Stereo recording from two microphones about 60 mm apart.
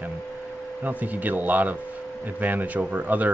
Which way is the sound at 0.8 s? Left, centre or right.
Right.